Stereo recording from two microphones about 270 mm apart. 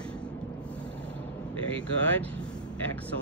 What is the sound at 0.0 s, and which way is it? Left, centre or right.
Vehicle, centre.